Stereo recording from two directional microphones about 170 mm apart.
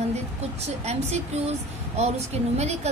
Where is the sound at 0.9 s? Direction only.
40° right (ahead or behind).